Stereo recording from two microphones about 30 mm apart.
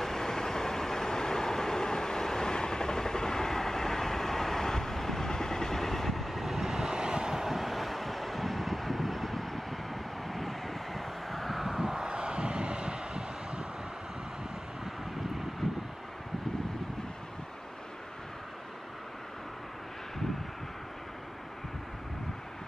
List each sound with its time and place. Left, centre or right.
0.0 s vehicle: centre; by 7.4 s right
7.4 s vehicle: centre
11.6 s vehicle: centre
12.1 s vehicle: right
15.6 s vehicle: centre